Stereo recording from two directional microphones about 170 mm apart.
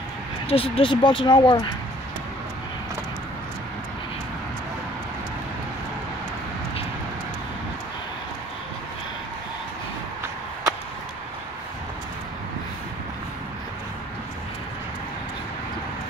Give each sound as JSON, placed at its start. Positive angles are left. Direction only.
{"t": 0.5, "sound": "speech", "side_deg": 35}